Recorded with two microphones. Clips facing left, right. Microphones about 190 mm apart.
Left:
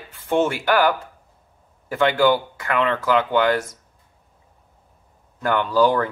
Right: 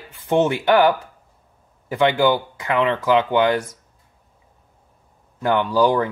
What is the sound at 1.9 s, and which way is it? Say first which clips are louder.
Speech: even; 15° right (ahead or behind).